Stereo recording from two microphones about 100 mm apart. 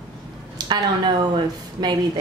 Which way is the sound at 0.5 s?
45° right (ahead or behind).